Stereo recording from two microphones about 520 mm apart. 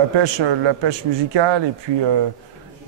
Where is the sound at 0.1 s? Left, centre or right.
Right.